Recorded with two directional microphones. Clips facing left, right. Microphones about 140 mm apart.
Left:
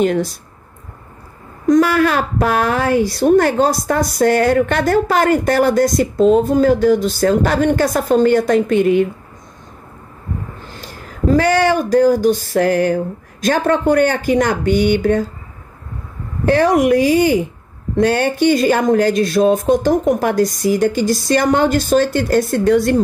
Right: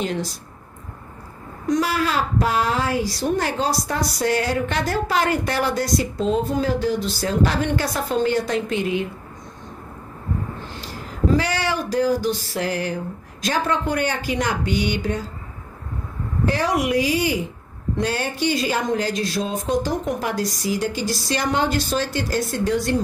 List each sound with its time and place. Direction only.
0.0 s a woman's voice: 55° left (ahead or behind)
1.7 s a woman's voice: 55° left (ahead or behind)
11.2 s a woman's voice: 50° left (ahead or behind)
16.4 s a woman's voice: 55° left (ahead or behind)
17.9 s a woman's voice: 60° left (ahead or behind)